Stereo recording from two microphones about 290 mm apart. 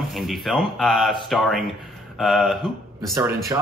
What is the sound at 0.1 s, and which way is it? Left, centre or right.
Speech, centre.